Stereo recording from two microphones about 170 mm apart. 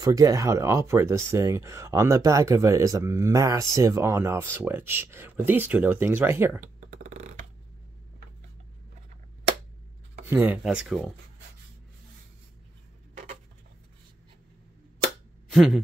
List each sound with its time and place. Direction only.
0.0 s speech: 20° right (ahead or behind)
6.6 s a sound: 45° right (ahead or behind)
10.2 s speech: 10° right (ahead or behind)
15.5 s a man's voice: centre (ahead or behind)